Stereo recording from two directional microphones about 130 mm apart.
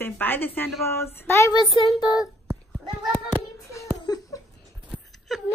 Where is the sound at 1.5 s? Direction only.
35° left (ahead or behind).